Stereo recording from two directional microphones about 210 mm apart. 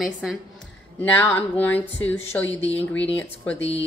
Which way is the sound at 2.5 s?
30° left (ahead or behind).